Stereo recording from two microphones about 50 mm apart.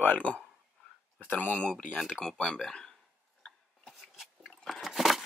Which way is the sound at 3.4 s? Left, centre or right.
Centre.